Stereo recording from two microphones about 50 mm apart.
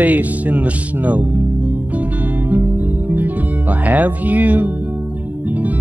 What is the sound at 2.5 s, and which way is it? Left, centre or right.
Music, right.